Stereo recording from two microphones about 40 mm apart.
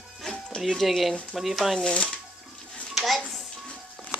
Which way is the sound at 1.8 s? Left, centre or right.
Left.